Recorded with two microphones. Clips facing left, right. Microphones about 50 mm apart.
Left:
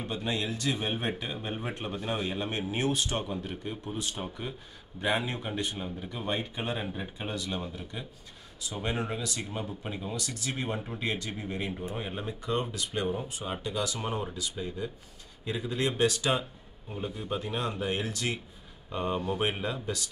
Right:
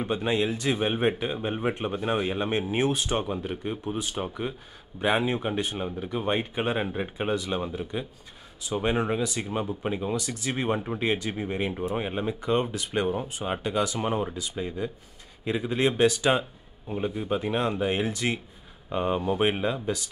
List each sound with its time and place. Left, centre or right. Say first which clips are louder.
0.0 s speech: right 7 dB; right
10.1 s speech: right 5 dB; right